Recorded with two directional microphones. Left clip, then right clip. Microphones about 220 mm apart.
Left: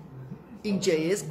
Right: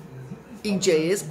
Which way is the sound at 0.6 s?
10° right (ahead or behind).